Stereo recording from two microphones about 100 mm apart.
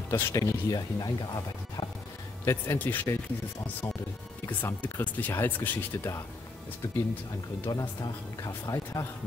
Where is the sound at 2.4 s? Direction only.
25° left (ahead or behind).